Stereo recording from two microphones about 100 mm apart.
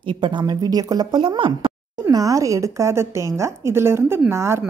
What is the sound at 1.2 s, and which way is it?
Speech, 55° right (ahead or behind).